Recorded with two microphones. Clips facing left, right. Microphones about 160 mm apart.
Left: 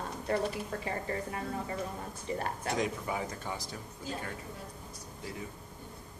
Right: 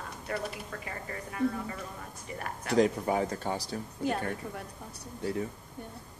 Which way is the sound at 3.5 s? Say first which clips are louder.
Right 6 dB; 70° right (ahead or behind).